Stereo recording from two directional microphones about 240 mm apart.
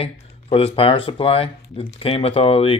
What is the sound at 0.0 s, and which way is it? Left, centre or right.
Speech, left.